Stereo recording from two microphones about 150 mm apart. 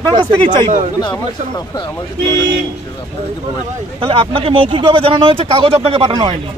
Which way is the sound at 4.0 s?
35° right (ahead or behind).